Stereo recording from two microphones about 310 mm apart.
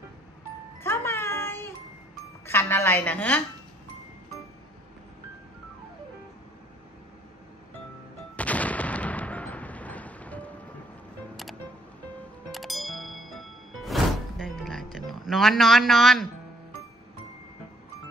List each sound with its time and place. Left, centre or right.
0.8 s a sound: centre
2.4 s a woman's voice: centre
8.4 s artillery fire: centre
12.4 s music: centre